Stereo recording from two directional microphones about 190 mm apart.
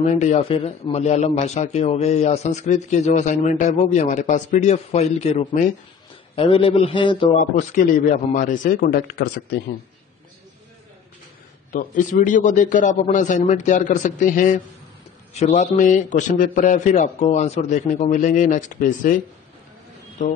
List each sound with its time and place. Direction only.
0.0 s a man's voice: 40° left (ahead or behind)
7.3 s a man's voice: 40° left (ahead or behind); by 9.8 s 55° left (ahead or behind)
11.7 s a man's voice: 45° left (ahead or behind)